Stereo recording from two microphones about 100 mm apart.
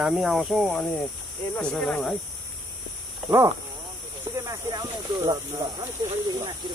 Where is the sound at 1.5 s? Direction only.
10° left (ahead or behind).